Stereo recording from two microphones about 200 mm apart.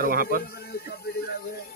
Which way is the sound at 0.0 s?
45° right (ahead or behind).